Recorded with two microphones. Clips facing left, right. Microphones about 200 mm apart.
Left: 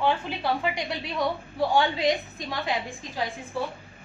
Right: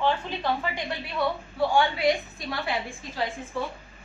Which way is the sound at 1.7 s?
20° left (ahead or behind).